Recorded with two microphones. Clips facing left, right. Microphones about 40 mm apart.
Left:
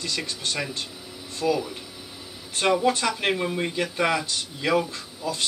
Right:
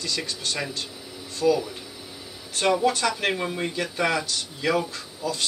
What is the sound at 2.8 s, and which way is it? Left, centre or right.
A man's voice, centre.